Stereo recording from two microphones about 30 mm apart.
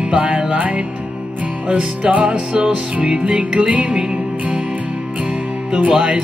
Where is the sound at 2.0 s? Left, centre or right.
Right.